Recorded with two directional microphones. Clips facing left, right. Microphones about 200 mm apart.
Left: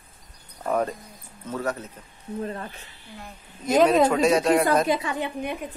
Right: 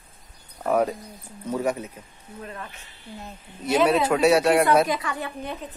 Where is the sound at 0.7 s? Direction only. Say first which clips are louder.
Right 3 dB; 5° right (ahead or behind).